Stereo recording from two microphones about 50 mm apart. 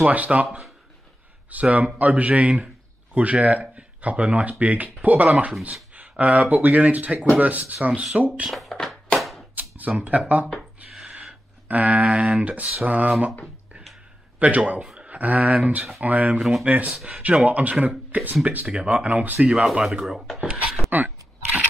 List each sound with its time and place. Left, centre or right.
0.1 s speech: right
8.5 s speech: centre
8.7 s music: centre
9.2 s a sound: centre
9.6 s speech: right
10.9 s a sound: centre
11.6 s speech: right
14.4 s speech: right
16.3 s speech: centre
16.6 s speech: right
19.5 s speech: centre
20.9 s a sound: right